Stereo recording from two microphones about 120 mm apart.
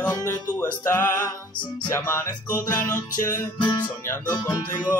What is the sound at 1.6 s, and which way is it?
Music, 15° left (ahead or behind).